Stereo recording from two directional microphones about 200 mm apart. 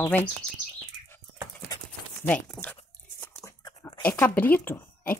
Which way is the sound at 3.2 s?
15° left (ahead or behind).